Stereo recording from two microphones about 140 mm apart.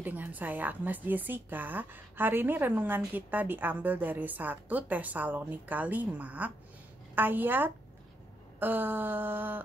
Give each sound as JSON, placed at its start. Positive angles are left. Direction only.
{"t": 0.0, "sound": "a woman's voice", "side_deg": -15}